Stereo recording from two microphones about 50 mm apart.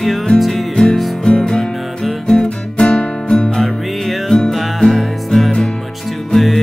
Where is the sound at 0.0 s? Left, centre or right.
Centre.